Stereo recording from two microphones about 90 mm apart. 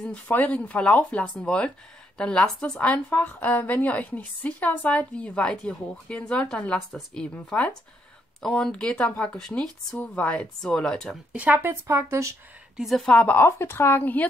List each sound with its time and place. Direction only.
0.0 s a woman's voice: 15° left (ahead or behind)
11.3 s speech: 20° right (ahead or behind)
12.7 s a woman's voice: centre (ahead or behind)
13.4 s speech: 25° left (ahead or behind)